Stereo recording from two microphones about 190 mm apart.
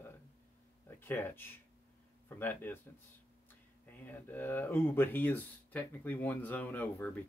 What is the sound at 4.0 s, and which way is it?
Speech, 10° left (ahead or behind).